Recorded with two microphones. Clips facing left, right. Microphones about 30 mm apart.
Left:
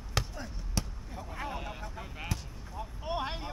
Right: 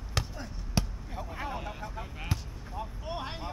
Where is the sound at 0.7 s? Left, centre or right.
Centre.